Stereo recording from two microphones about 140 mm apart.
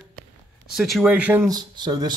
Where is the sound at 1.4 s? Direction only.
30° right (ahead or behind).